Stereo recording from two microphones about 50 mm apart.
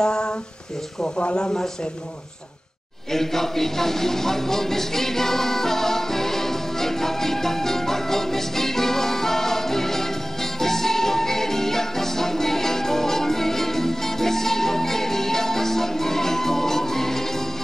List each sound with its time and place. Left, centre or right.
0.0 s a sound: centre
1.1 s speech: centre
3.1 s music: centre